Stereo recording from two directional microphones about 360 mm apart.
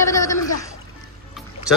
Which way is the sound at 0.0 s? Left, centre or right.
Centre.